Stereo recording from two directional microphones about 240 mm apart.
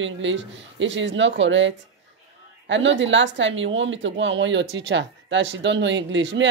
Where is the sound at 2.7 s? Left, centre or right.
Right.